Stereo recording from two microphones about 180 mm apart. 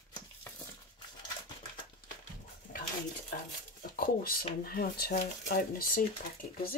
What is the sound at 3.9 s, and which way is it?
Speech, 55° left (ahead or behind).